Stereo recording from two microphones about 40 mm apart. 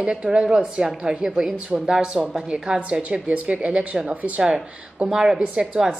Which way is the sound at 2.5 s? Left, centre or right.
Right.